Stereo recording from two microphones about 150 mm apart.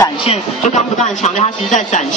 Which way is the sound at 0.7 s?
55° left (ahead or behind).